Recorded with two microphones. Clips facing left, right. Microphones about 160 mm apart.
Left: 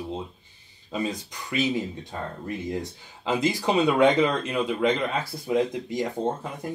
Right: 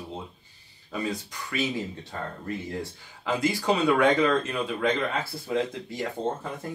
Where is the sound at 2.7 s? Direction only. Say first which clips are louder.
Left 3 dB; 20° left (ahead or behind).